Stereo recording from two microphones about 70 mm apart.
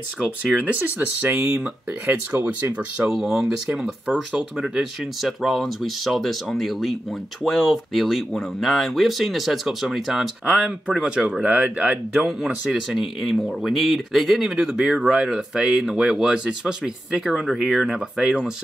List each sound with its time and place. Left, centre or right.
0.6 s speech: centre
2.4 s speech: centre
3.1 s speech: centre
10.4 s speech: centre
12.1 s speech: centre